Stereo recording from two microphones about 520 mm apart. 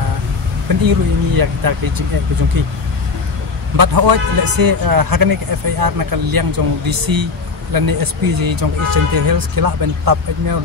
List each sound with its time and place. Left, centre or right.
0.8 s a man's voice: right
3.7 s a man's voice: right